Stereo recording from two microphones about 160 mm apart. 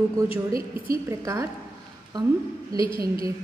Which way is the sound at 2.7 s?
30° left (ahead or behind).